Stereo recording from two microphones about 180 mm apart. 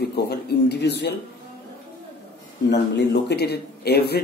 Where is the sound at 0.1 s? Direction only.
65° left (ahead or behind).